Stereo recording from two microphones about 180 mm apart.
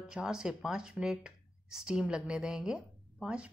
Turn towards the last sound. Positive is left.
turn(degrees=-5)  # may be behind; listen again after turning